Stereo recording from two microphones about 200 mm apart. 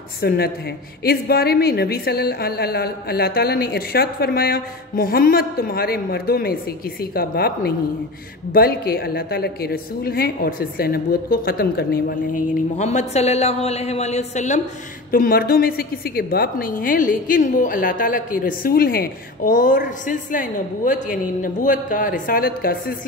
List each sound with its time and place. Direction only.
0.2 s a woman's voice: 55° left (ahead or behind)
12.7 s a woman's voice: 35° left (ahead or behind)